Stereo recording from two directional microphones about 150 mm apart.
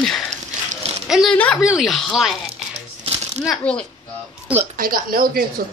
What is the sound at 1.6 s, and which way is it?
Speech, 5° right (ahead or behind).